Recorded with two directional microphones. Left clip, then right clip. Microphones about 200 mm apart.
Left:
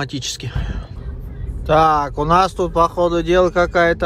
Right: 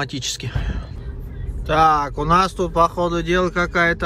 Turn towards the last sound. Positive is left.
turn(degrees=20)  # may be behind; listen again after turning